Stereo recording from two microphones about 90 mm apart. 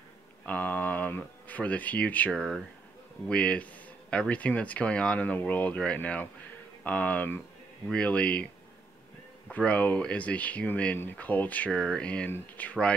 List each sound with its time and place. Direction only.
0.5 s speech: 20° left (ahead or behind)
9.5 s speech: 15° left (ahead or behind)